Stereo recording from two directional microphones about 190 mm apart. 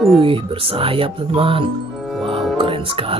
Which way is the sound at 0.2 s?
30° right (ahead or behind).